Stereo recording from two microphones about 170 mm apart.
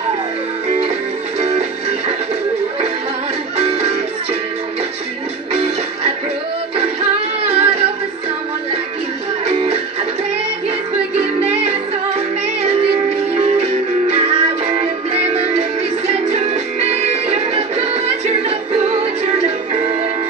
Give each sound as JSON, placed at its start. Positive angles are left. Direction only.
{"t": 0.7, "sound": "music", "side_deg": -35}
{"t": 3.5, "sound": "music", "side_deg": -35}
{"t": 5.5, "sound": "music", "side_deg": -35}
{"t": 9.5, "sound": "music", "side_deg": -35}
{"t": 11.1, "sound": "music", "side_deg": -35}